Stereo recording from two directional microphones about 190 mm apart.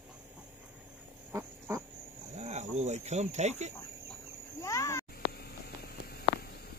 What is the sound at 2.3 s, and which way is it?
Livestock, 35° right (ahead or behind).